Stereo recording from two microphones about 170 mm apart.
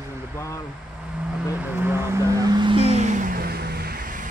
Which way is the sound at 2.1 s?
20° right (ahead or behind).